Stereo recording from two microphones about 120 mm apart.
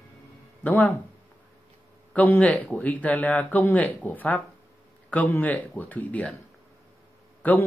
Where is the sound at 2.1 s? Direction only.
15° left (ahead or behind).